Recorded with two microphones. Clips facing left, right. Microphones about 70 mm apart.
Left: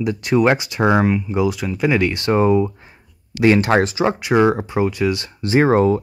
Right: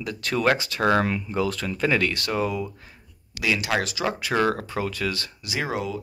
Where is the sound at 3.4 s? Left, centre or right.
Left.